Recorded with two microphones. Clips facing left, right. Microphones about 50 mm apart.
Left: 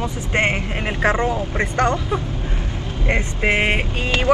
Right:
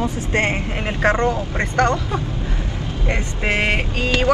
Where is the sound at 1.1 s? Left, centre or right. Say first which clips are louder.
Right 1 dB; centre.